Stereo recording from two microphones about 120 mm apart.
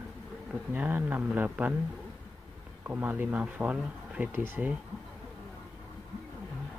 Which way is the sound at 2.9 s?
15° right (ahead or behind).